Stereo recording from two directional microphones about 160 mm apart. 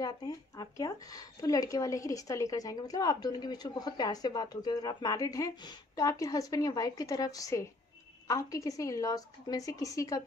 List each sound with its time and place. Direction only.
0.0 s speech: 25° left (ahead or behind)